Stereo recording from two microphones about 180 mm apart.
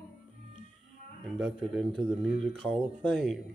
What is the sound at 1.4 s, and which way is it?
Speech, centre (ahead or behind).